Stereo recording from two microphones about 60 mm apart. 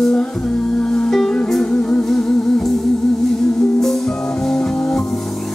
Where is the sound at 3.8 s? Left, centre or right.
Centre.